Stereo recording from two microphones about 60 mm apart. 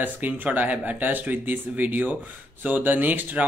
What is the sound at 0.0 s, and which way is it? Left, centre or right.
Speech, right.